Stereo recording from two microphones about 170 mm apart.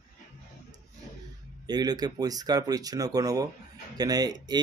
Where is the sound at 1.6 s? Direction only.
25° right (ahead or behind).